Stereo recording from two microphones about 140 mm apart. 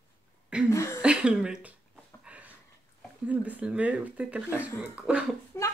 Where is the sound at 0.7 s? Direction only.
20° left (ahead or behind).